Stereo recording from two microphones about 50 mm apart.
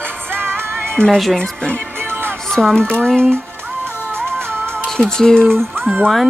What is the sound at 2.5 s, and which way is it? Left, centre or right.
Speech, centre.